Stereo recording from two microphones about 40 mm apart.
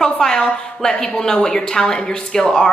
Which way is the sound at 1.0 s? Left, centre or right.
Centre.